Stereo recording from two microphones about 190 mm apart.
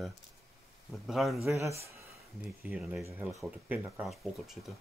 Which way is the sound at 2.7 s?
5° right (ahead or behind).